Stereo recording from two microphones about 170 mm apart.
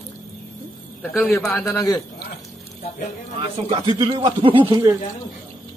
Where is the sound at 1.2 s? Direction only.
5° left (ahead or behind).